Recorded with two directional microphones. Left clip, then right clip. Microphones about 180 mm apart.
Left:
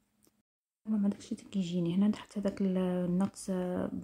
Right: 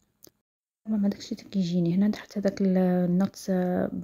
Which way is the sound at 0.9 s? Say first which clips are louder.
Right 5 dB; 25° right (ahead or behind).